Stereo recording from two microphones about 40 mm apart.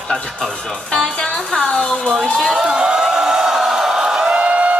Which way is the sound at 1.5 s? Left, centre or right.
Centre.